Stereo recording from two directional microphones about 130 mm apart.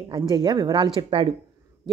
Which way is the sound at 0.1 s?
30° right (ahead or behind).